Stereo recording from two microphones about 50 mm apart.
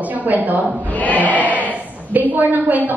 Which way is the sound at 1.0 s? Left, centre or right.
Left.